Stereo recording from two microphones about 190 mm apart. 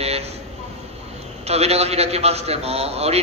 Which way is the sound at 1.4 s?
35° right (ahead or behind).